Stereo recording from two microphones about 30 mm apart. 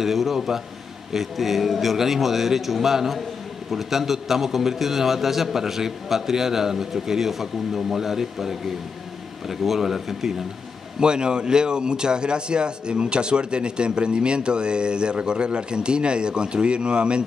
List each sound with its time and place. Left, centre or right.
0.0 s a man's voice: centre
11.0 s a man's voice: right